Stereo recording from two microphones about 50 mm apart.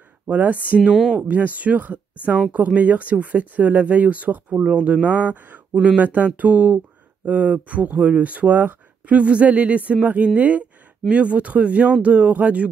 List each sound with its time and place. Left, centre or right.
0.3 s speech: right
4.6 s speech: right